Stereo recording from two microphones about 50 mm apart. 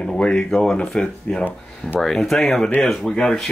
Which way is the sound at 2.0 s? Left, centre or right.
Centre.